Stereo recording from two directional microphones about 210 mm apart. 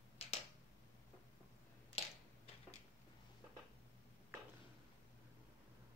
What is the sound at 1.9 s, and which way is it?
Finger snapping, 30° left (ahead or behind).